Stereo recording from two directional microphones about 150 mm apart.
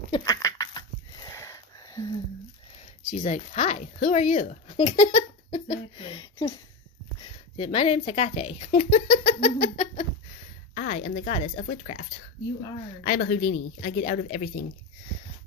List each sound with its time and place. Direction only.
0.1 s a sound: 25° left (ahead or behind)
3.2 s speech: 50° left (ahead or behind)
6.3 s speech: 20° left (ahead or behind)
7.5 s speech: 45° left (ahead or behind)
11.8 s speech: 55° left (ahead or behind)